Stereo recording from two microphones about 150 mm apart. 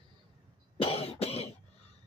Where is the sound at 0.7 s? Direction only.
40° left (ahead or behind).